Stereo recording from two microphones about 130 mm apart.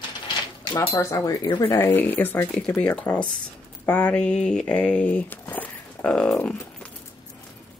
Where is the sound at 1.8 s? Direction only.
20° left (ahead or behind).